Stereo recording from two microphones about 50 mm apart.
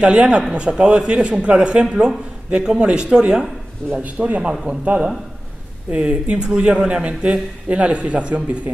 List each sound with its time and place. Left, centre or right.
0.0 s a man's voice: centre
3.9 s a man's voice: right